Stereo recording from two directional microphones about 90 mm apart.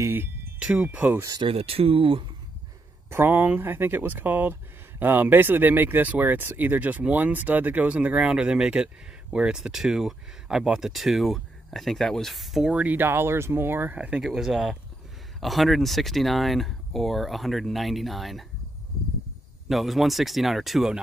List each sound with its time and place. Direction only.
0.0 s a sound: 25° right (ahead or behind)
0.6 s speech: 10° right (ahead or behind)
0.8 s speech: 20° right (ahead or behind)
1.4 s speech: 90° right
3.1 s speech: 25° right (ahead or behind); by 12.7 s centre (ahead or behind)
12.7 s speech: 20° right (ahead or behind)
14.2 s speech: 5° right (ahead or behind)
19.7 s speech: centre (ahead or behind)